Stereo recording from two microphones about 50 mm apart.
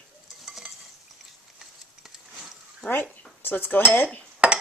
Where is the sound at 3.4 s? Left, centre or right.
Left.